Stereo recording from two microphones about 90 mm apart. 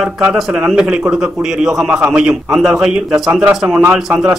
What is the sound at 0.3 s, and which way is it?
A man's voice, 5° right (ahead or behind).